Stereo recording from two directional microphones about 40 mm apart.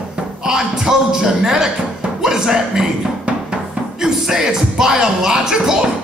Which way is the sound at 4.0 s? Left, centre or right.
Centre.